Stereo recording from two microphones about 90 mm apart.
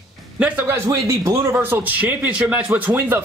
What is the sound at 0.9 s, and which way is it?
Speech, 35° right (ahead or behind).